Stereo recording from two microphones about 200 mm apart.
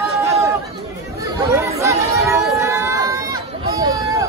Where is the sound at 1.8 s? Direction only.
15° right (ahead or behind).